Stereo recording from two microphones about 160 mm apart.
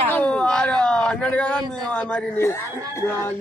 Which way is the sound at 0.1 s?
10° left (ahead or behind).